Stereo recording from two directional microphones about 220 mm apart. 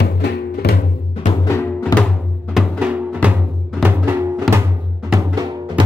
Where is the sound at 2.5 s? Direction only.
5° right (ahead or behind).